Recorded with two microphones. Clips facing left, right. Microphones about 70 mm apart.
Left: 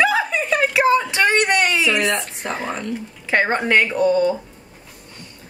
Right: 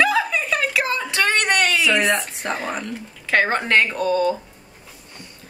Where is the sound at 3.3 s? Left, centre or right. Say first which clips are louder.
Left 1 dB; left.